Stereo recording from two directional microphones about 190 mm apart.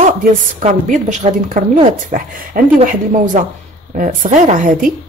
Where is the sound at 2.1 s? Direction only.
45° right (ahead or behind).